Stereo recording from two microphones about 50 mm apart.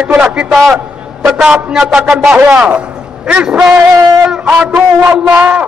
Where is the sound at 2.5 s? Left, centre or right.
Right.